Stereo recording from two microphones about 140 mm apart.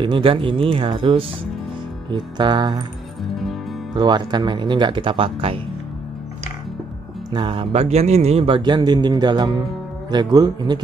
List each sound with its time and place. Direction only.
0.0 s speech: 35° right (ahead or behind)
3.9 s speech: 30° right (ahead or behind)
7.3 s speech: 35° right (ahead or behind)